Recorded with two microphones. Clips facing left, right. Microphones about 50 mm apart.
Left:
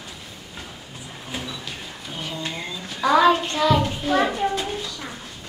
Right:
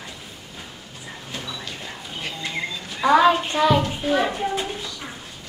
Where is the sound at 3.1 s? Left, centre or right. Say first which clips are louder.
Right 1 dB; centre.